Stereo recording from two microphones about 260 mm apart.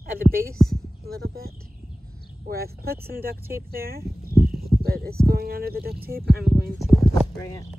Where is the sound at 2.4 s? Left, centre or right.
Right.